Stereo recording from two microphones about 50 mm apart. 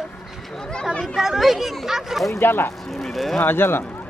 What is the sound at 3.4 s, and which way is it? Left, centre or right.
Speech, left.